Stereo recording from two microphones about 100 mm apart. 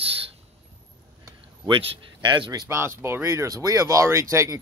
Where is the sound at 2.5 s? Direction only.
25° right (ahead or behind).